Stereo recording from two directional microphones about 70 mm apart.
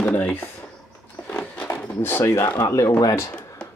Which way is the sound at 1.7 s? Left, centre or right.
Left.